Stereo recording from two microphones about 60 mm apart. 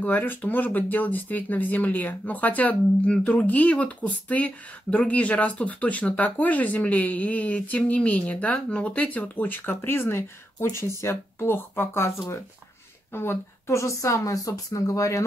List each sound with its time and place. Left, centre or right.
0.0 s speech: left
13.1 s speech: left